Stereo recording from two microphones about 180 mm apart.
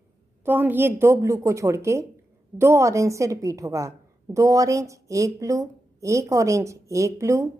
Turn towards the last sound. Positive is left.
turn(degrees=-15)  # may be behind; listen again after turning